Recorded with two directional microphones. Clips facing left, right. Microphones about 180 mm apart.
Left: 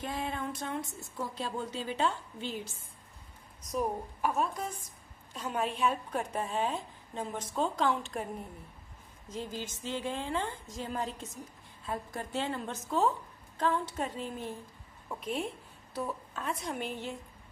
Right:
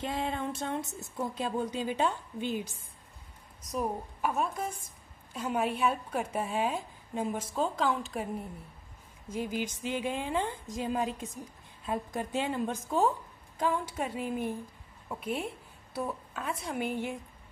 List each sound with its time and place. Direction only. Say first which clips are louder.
0.0 s a sound: right 3 dB; 25° right (ahead or behind)
1.1 s a woman's voice: right 4 dB; 20° right (ahead or behind)
3.7 s a woman's voice: even; 5° right (ahead or behind)
9.3 s a woman's voice: right 5 dB; 15° right (ahead or behind)